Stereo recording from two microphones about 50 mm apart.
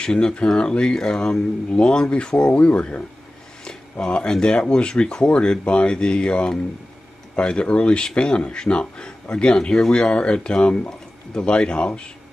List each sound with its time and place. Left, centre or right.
0.0 s speech: centre
4.0 s speech: centre